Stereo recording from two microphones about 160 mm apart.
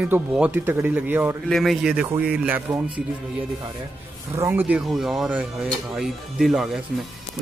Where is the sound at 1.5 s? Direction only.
Centre (ahead or behind).